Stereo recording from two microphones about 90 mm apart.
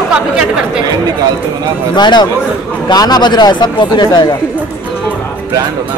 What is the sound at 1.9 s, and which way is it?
Speech, 55° left (ahead or behind).